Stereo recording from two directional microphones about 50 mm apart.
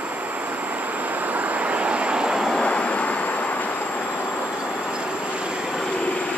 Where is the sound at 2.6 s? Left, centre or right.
Left.